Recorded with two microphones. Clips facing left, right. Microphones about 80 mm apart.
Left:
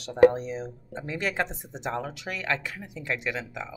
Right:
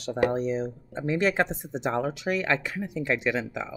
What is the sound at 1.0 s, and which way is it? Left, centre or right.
Speech, right.